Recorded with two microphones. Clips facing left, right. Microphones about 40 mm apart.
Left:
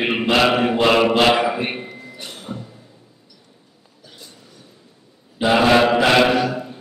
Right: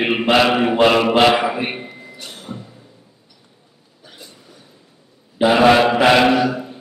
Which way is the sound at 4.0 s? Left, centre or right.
Centre.